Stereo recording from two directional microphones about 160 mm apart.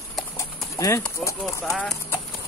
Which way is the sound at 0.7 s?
20° left (ahead or behind).